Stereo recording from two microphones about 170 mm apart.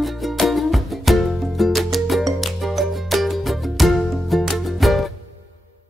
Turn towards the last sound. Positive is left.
turn(degrees=0)  # may be behind; listen again after turning